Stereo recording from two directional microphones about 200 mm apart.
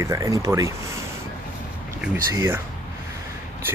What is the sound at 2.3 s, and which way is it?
Speech, 15° right (ahead or behind).